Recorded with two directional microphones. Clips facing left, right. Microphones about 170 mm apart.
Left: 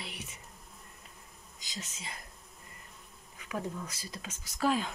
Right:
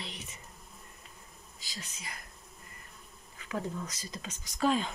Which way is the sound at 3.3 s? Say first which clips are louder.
Right 1 dB; 10° left (ahead or behind).